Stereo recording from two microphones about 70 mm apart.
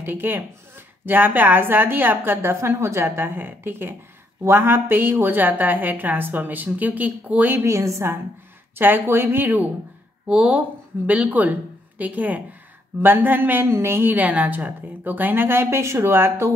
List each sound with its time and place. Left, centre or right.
0.0 s a woman's voice: right
7.5 s a woman's voice: right
8.7 s a woman's voice: right
10.2 s a woman's voice: centre; by 16.5 s right